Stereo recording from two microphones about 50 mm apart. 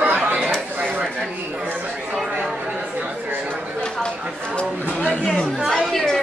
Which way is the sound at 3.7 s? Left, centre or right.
Centre.